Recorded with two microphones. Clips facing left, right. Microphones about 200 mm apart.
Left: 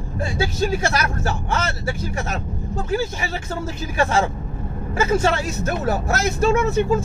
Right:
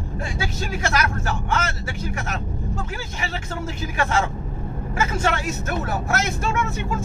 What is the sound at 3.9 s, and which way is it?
Speech, 30° left (ahead or behind).